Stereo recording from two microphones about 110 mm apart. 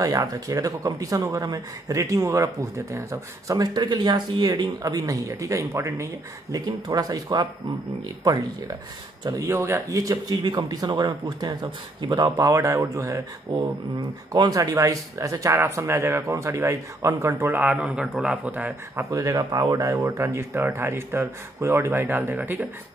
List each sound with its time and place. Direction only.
0.3 s speech: 30° right (ahead or behind)
4.8 s speech: 30° right (ahead or behind)
9.2 s speech: 30° right (ahead or behind)
11.6 s speech: 50° right (ahead or behind)
12.2 s speech: 35° right (ahead or behind); by 19.0 s 15° right (ahead or behind)
19.0 s speech: 30° right (ahead or behind); by 22.7 s 15° right (ahead or behind)